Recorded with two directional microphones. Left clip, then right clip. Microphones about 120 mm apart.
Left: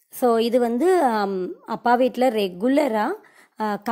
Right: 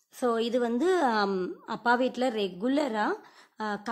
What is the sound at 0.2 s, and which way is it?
A woman's voice, 45° left (ahead or behind).